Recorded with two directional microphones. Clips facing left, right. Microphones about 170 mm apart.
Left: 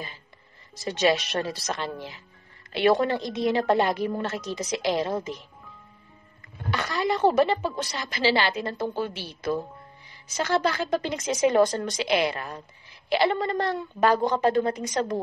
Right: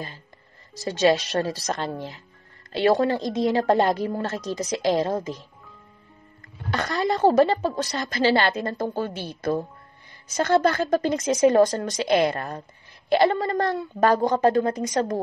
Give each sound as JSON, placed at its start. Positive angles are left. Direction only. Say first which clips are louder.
{"t": 0.8, "sound": "a woman's voice", "louder": "right 3 dB", "side_deg": -40}
{"t": 6.7, "sound": "a woman's voice", "louder": "right 2 dB", "side_deg": -40}